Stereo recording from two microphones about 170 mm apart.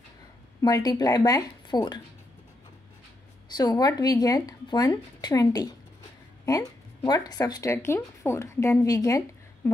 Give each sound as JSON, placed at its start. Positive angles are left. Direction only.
{"t": 0.6, "sound": "speech", "side_deg": 20}
{"t": 3.4, "sound": "a woman's voice", "side_deg": 25}